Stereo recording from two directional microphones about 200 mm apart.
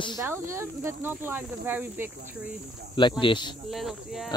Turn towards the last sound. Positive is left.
turn(degrees=0)  # may be behind; listen again after turning